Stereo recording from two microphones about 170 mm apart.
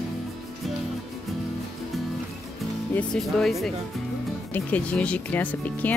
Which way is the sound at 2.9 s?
5° left (ahead or behind).